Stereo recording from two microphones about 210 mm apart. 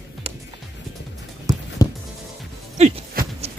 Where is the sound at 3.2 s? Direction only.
45° right (ahead or behind).